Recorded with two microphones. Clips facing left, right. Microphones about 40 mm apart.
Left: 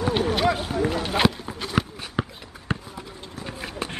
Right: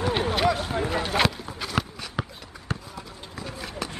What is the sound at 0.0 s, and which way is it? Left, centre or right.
Run, right.